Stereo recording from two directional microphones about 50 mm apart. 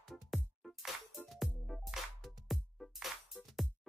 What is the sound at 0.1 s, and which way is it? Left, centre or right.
Music, centre.